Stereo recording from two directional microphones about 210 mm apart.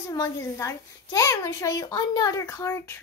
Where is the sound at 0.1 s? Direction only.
15° left (ahead or behind).